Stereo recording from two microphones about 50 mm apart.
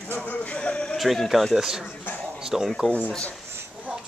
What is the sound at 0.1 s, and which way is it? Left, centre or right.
Male singing, left.